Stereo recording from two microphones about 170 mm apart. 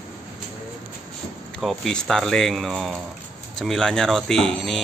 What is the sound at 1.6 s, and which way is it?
Speech, centre (ahead or behind).